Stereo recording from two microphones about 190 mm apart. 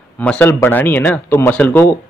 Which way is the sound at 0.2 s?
10° left (ahead or behind).